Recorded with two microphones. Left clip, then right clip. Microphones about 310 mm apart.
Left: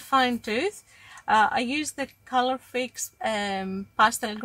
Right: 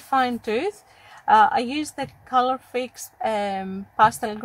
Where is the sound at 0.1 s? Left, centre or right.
Centre.